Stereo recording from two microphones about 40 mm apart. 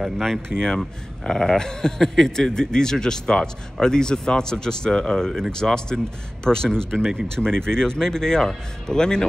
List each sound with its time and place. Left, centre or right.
0.2 s a man's voice: centre